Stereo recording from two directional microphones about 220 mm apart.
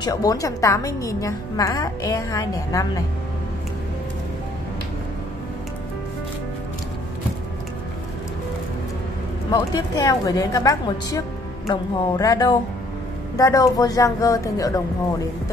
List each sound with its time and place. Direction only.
0.0 s a woman's voice: 15° left (ahead or behind)
9.5 s a woman's voice: 15° left (ahead or behind)